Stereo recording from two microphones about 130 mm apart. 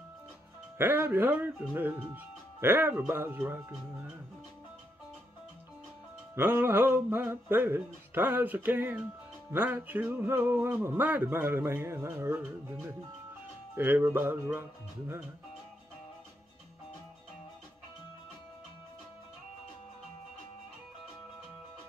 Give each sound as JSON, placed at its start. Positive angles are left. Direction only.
{"t": 0.7, "sound": "speech", "side_deg": -15}
{"t": 6.3, "sound": "speech", "side_deg": -15}